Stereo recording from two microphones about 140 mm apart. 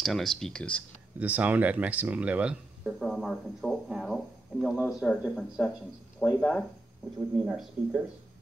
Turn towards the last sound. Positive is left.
turn(degrees=-5)  # may be behind; listen again after turning